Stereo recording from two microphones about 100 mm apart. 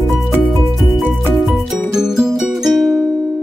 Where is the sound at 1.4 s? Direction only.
Centre (ahead or behind).